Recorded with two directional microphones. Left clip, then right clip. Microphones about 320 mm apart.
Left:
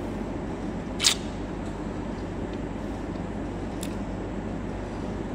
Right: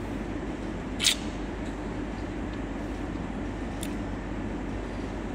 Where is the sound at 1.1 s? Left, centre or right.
Centre.